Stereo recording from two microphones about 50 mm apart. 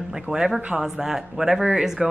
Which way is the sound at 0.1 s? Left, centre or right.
Centre.